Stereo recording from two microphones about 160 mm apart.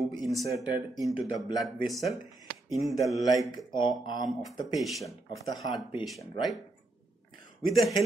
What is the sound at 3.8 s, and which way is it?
Speech, 25° left (ahead or behind).